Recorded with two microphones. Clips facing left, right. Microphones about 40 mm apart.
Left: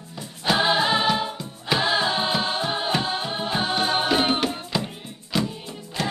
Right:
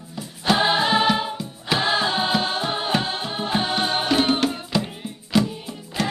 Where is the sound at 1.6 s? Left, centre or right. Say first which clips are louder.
Right 1 dB; centre.